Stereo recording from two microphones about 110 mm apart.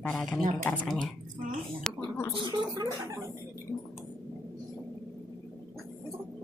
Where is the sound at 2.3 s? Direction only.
45° right (ahead or behind).